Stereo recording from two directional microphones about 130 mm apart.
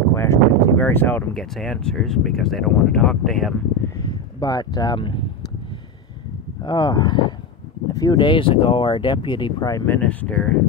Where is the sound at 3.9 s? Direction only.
30° left (ahead or behind).